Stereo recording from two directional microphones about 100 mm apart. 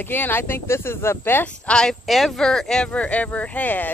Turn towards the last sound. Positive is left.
turn(degrees=15)  # may be behind; listen again after turning